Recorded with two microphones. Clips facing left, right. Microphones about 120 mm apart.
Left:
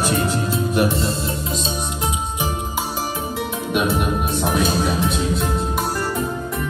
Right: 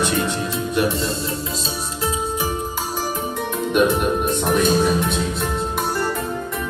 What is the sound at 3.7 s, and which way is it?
Music, 5° left (ahead or behind).